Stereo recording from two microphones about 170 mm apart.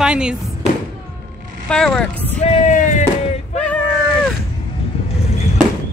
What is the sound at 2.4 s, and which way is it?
Speech, 45° left (ahead or behind).